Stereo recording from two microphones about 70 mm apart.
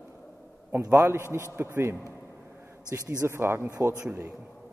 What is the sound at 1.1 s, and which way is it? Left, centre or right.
Speech, right.